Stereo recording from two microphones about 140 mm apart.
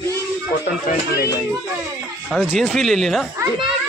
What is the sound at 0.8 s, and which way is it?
Speech, 90° left.